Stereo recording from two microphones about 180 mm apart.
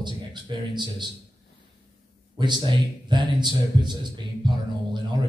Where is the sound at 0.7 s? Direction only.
25° right (ahead or behind).